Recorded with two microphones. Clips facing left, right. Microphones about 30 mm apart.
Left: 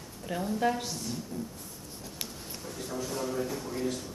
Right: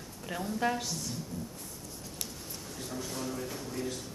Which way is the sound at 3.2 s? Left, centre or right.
Left.